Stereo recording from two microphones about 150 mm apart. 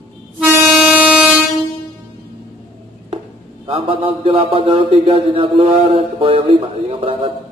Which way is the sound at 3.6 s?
35° right (ahead or behind).